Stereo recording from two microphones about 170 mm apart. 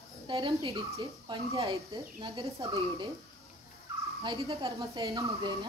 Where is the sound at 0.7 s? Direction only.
20° right (ahead or behind).